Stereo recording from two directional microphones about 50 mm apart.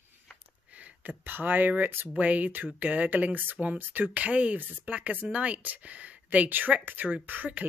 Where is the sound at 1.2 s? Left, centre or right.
Right.